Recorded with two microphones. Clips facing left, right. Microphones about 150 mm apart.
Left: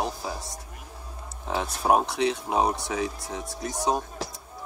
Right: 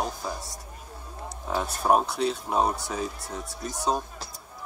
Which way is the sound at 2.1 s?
75° left (ahead or behind).